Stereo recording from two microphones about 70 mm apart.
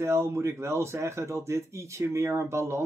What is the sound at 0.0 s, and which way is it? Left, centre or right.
Speech, right.